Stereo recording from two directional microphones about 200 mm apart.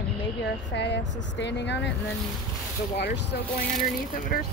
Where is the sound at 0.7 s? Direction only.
60° left (ahead or behind).